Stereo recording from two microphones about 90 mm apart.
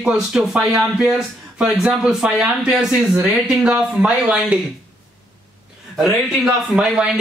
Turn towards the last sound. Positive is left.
turn(degrees=-10)  # may be behind; listen again after turning